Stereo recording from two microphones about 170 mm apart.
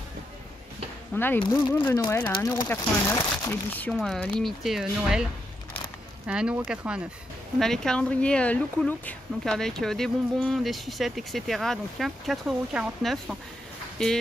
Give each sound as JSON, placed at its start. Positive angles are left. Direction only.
{"t": 1.1, "sound": "speech", "side_deg": 10}